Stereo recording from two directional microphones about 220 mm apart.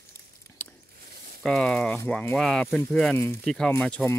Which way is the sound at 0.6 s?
10° left (ahead or behind).